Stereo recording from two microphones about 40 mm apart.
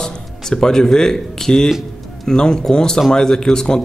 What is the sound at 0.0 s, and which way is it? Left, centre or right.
Speech, centre.